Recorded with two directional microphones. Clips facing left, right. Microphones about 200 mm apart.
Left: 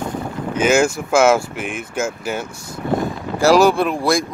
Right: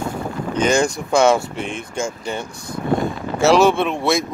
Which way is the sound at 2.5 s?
60° right (ahead or behind).